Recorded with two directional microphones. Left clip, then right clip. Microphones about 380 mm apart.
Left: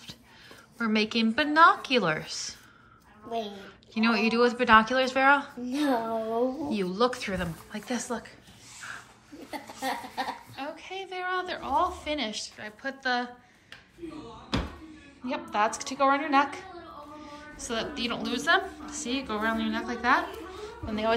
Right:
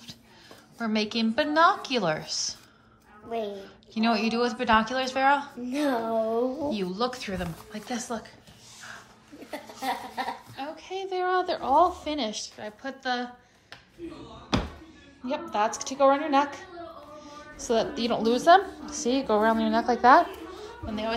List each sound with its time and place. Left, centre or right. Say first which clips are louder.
0.7 s a woman's voice: left 1 dB; centre
9.5 s a woman's voice: right 1 dB; centre
15.2 s a woman's voice: right 1 dB; centre